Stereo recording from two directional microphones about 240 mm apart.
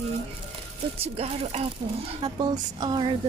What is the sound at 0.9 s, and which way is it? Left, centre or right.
A woman's voice, right.